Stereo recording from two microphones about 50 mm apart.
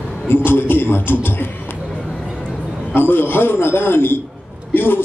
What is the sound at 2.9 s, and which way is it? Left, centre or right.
A man's voice, left.